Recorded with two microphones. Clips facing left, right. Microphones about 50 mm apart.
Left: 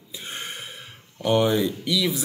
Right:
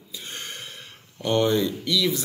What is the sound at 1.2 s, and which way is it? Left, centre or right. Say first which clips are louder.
Speech: left 1 dB; centre.